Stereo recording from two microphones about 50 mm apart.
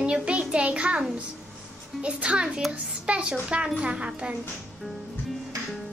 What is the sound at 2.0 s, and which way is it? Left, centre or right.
A child's voice, right.